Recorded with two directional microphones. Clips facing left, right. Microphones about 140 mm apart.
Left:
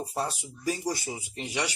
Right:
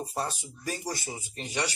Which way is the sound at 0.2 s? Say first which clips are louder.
Left 3 dB; 10° left (ahead or behind).